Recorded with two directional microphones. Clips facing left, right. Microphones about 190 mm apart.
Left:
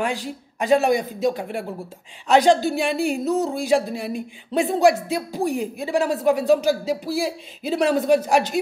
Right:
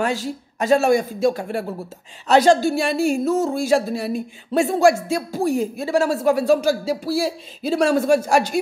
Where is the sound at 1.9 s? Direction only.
40° right (ahead or behind).